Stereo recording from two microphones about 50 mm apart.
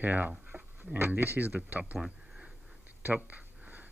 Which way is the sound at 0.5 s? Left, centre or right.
Right.